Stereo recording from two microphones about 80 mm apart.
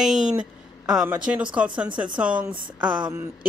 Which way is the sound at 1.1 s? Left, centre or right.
Centre.